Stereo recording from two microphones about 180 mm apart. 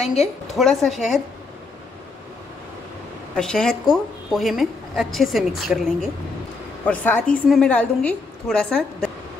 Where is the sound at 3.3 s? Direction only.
5° left (ahead or behind).